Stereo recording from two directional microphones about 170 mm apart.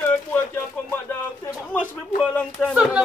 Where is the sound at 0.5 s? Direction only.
10° left (ahead or behind).